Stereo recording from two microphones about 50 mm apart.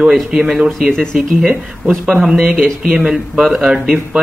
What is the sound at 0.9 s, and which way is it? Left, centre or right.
Speech, centre.